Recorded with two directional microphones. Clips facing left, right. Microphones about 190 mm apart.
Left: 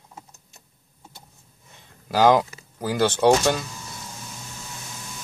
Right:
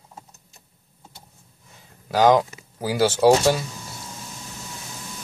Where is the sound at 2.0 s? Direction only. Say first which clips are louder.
Right 1 dB; centre (ahead or behind).